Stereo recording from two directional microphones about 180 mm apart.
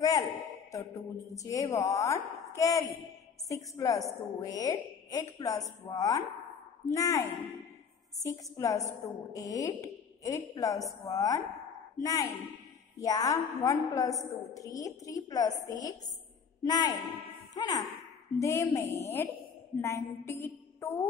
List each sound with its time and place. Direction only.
0.7 s a woman's voice: 20° left (ahead or behind)